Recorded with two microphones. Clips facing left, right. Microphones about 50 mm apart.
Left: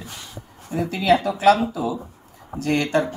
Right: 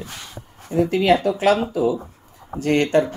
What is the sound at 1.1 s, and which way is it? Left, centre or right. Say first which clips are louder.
Speech: left 2 dB; left.